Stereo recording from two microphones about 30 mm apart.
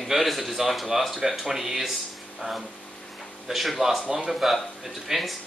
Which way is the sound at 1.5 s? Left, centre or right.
Centre.